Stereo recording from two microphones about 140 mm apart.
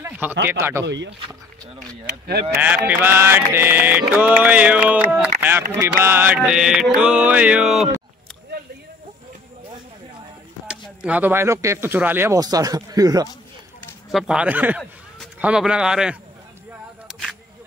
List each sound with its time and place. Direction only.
0.0 s speech: 15° right (ahead or behind)
2.5 s mantra: 10° right (ahead or behind)
11.0 s mantra: 10° right (ahead or behind)
12.4 s speech: 25° right (ahead or behind)
14.1 s mantra: 5° right (ahead or behind)
15.4 s speech: 5° right (ahead or behind)
17.1 s single-lens reflex camera: centre (ahead or behind)